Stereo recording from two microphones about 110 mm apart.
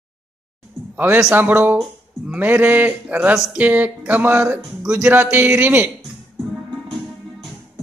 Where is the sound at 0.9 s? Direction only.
15° right (ahead or behind).